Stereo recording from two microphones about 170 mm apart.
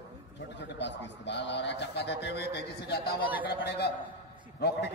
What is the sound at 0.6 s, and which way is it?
A man's voice, 90° left.